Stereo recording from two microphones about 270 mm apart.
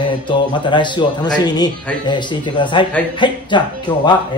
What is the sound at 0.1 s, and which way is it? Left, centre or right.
Speech, centre.